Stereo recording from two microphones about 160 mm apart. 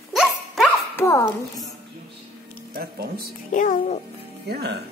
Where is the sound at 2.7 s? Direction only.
70° right (ahead or behind).